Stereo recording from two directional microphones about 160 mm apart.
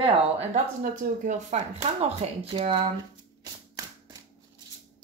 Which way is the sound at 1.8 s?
40° right (ahead or behind).